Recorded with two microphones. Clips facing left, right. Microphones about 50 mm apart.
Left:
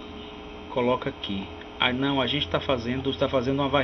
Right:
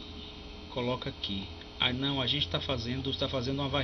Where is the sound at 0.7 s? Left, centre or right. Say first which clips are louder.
Left 9 dB; left.